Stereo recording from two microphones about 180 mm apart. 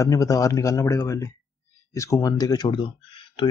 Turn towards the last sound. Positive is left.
turn(degrees=25)  # may be behind; listen again after turning